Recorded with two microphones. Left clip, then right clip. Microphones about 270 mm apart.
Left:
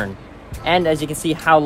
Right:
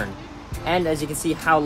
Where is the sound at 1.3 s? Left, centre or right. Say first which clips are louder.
Left 5 dB; left.